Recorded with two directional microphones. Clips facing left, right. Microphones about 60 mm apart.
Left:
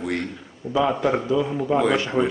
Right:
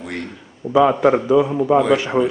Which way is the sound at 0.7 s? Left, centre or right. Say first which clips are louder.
Right 7 dB; right.